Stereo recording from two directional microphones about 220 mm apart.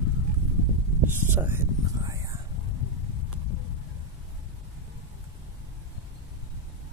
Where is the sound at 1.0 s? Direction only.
10° right (ahead or behind).